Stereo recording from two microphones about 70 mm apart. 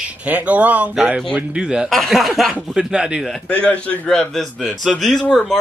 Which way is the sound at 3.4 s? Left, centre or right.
Centre.